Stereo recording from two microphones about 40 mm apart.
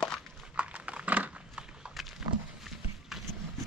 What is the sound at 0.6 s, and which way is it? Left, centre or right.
Dog, right.